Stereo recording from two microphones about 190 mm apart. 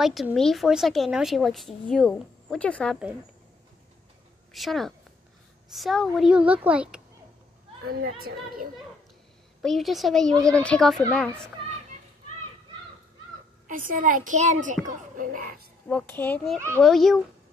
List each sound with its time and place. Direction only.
0.0 s a woman's voice: centre (ahead or behind)
4.5 s a woman's voice: centre (ahead or behind)
7.8 s a child's voice: 50° right (ahead or behind)
9.6 s a woman's voice: centre (ahead or behind)
13.7 s a child's voice: 45° right (ahead or behind)
15.9 s a child's voice: 10° left (ahead or behind)
16.5 s a child's voice: 15° right (ahead or behind)
16.8 s a woman's voice: centre (ahead or behind)